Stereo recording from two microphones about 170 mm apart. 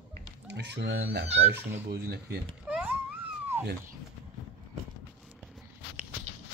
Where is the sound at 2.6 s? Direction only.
10° right (ahead or behind).